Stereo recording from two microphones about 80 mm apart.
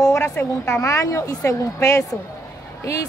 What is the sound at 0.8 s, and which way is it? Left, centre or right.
A woman's voice, left.